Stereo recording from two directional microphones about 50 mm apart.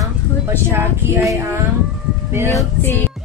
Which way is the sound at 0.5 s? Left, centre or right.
Right.